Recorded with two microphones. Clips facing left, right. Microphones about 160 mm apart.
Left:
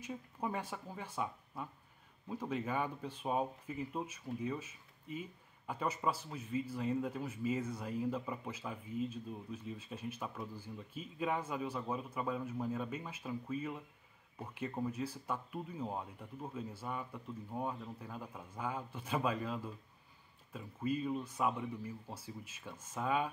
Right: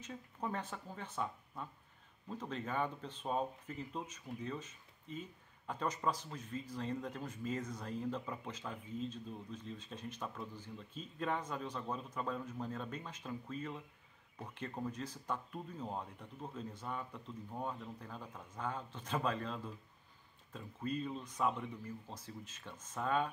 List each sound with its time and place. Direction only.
0.0 s speech: 10° left (ahead or behind)